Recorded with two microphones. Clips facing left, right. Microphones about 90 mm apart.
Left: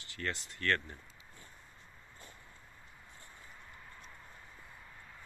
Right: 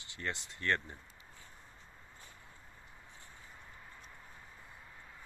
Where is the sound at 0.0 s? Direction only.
20° right (ahead or behind).